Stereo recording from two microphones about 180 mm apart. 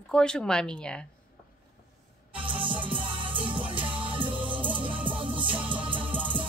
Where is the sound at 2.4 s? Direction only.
30° right (ahead or behind).